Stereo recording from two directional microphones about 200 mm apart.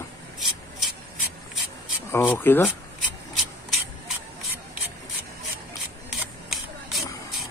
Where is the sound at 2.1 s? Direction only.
10° left (ahead or behind).